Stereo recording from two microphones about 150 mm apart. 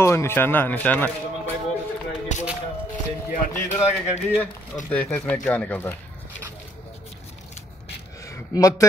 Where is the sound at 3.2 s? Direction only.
55° left (ahead or behind).